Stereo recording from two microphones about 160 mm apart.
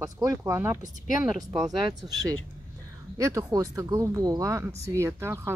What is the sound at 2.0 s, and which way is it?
Speech, 30° right (ahead or behind).